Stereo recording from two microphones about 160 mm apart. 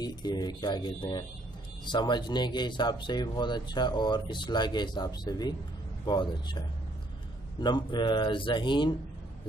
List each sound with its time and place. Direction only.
0.0 s speech: 25° left (ahead or behind)
7.6 s speech: 30° left (ahead or behind)